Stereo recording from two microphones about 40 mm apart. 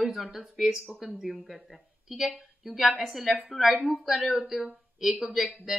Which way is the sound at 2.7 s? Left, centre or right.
Centre.